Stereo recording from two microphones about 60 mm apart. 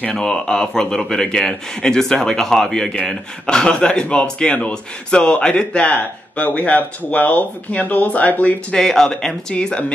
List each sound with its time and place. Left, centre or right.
0.1 s speech: centre; by 8.5 s left
8.7 s speech: centre